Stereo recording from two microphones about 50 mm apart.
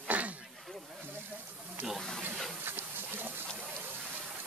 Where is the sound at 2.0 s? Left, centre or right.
Centre.